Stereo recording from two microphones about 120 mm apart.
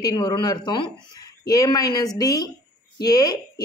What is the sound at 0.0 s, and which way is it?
A woman's voice, 35° left (ahead or behind).